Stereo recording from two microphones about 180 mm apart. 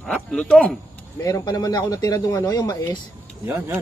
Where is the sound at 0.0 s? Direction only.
5° left (ahead or behind).